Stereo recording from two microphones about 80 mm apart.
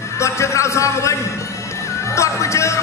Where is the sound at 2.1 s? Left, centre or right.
Left.